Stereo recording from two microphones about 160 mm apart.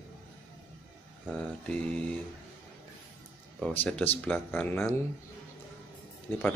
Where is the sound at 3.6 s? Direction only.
10° left (ahead or behind).